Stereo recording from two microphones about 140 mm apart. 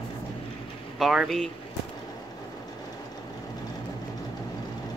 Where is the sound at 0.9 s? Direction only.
Centre (ahead or behind).